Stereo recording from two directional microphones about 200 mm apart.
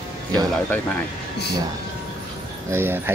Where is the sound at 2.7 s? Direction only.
10° right (ahead or behind).